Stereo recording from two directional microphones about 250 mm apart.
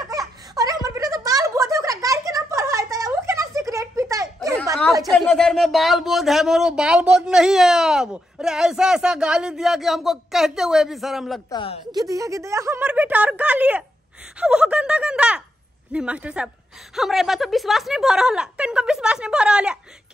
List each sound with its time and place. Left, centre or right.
0.6 s a sound: centre
5.1 s speech: centre
11.5 s a woman's voice: left
11.9 s speech: centre